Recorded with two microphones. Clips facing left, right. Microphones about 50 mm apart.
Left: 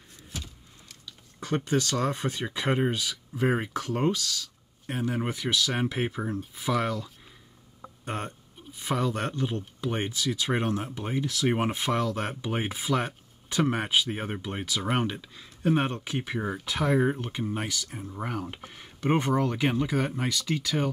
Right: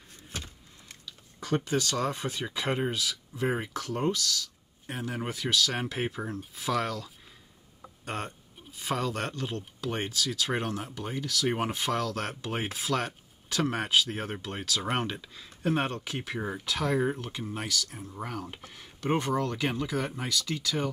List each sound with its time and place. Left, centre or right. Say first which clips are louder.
0.3 s vehicle: even; right
1.4 s speech: left 2 dB; left
5.2 s speech: left 1 dB; centre